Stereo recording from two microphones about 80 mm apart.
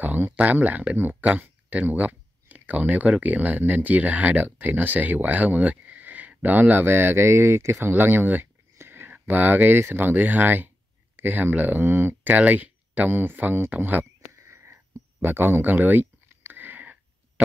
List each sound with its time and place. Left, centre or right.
0.0 s speech: right
14.3 s whispering: right
15.2 s a sound: right